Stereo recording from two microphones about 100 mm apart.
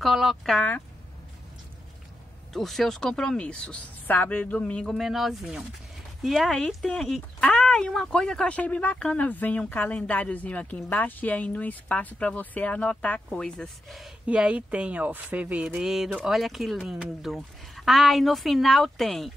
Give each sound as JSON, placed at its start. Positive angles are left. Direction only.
{"t": 0.0, "sound": "speech", "side_deg": 0}
{"t": 2.5, "sound": "speech", "side_deg": 0}
{"t": 4.8, "sound": "speech", "side_deg": 0}
{"t": 14.2, "sound": "speech", "side_deg": -15}